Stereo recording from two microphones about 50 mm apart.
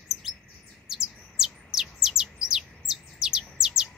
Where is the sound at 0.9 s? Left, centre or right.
Centre.